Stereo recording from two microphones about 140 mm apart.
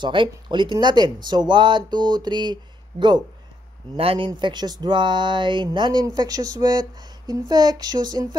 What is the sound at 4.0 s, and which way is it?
Speech, 40° right (ahead or behind).